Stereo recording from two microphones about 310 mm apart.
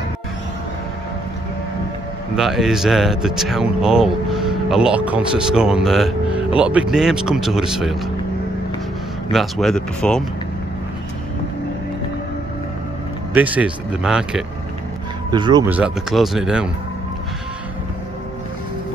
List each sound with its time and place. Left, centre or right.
2.3 s speech: centre
9.3 s speech: centre
13.3 s speech: centre
15.3 s speech: centre